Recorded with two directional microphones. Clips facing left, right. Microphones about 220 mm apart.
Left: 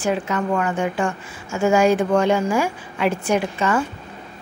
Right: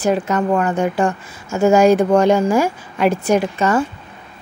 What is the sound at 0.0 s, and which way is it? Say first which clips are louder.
A woman's voice: right 5 dB; 40° right (ahead or behind).